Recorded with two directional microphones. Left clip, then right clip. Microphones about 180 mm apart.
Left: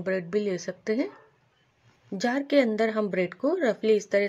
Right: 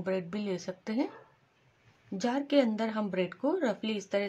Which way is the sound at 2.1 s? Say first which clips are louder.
Left 4 dB; 20° left (ahead or behind).